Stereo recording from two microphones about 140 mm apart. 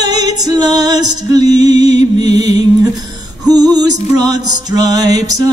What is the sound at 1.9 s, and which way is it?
Music, 50° left (ahead or behind).